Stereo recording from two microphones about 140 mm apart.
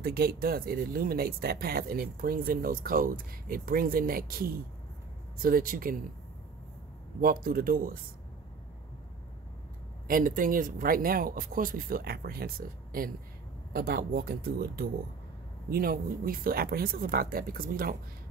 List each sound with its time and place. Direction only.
0.0 s speech: 90° right
7.2 s speech: 90° right
10.0 s speech: 80° right